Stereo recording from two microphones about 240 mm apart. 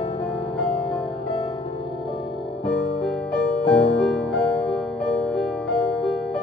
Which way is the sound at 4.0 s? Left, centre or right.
Centre.